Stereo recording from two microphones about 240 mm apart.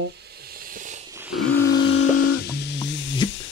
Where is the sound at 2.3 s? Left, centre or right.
Left.